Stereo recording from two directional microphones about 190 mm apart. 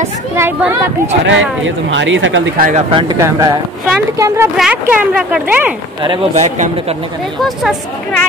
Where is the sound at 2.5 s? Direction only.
45° right (ahead or behind).